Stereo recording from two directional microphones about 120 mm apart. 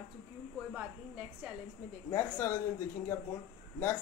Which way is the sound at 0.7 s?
10° right (ahead or behind).